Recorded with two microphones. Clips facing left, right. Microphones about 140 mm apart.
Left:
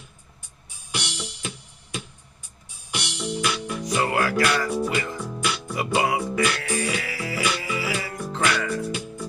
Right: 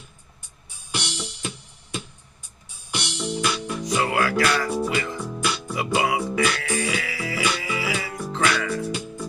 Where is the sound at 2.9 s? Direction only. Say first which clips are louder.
Right 2 dB; 30° right (ahead or behind).